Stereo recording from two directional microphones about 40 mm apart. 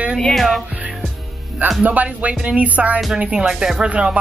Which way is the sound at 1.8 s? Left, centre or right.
Right.